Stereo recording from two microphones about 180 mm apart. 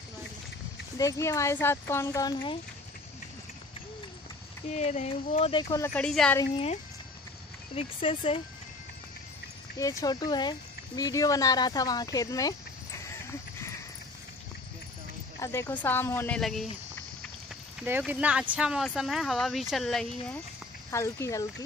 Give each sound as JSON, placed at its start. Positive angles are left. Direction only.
{"t": 0.9, "sound": "speech", "side_deg": 20}
{"t": 4.6, "sound": "speech", "side_deg": 40}
{"t": 5.9, "sound": "speech", "side_deg": 5}
{"t": 6.5, "sound": "speech", "side_deg": 35}
{"t": 9.8, "sound": "speech", "side_deg": 20}
{"t": 15.4, "sound": "speech", "side_deg": 15}
{"t": 16.3, "sound": "speech", "side_deg": 0}
{"t": 17.8, "sound": "speech", "side_deg": -10}
{"t": 20.9, "sound": "speech", "side_deg": 15}